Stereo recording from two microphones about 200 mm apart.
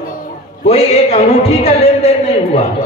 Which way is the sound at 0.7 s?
30° left (ahead or behind).